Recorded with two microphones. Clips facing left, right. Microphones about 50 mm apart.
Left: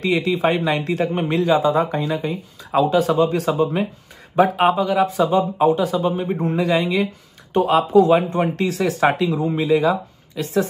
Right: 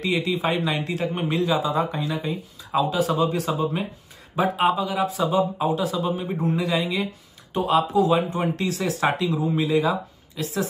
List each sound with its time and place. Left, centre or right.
0.0 s speech: left